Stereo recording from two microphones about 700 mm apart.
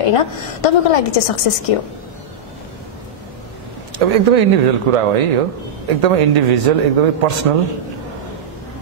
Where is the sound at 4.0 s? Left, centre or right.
Right.